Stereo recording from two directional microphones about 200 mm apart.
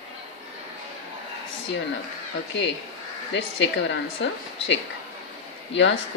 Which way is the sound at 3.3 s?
70° left (ahead or behind).